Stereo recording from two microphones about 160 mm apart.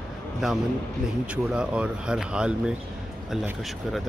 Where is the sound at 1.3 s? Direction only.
5° right (ahead or behind).